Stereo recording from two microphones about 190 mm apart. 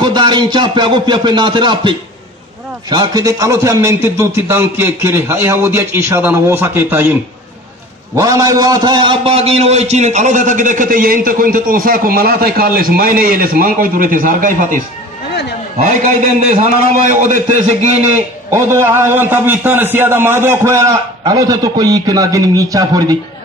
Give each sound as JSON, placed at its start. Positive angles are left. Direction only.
{"t": 0.0, "sound": "a sound", "side_deg": -25}
{"t": 2.9, "sound": "a man's voice", "side_deg": -20}
{"t": 8.2, "sound": "a man's voice", "side_deg": -15}
{"t": 17.1, "sound": "a man's voice", "side_deg": -40}
{"t": 18.5, "sound": "a man's voice", "side_deg": -15}